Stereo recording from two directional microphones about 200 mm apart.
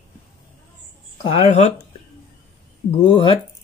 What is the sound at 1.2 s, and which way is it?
Speech, 30° left (ahead or behind).